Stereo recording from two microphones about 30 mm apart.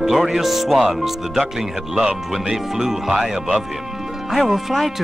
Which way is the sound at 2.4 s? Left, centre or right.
Centre.